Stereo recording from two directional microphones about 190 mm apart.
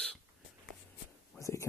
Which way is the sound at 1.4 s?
15° left (ahead or behind).